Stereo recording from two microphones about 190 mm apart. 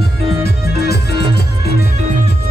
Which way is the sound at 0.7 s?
55° left (ahead or behind).